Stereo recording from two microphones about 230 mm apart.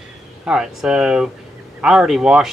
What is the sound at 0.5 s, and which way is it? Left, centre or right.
Speech, centre.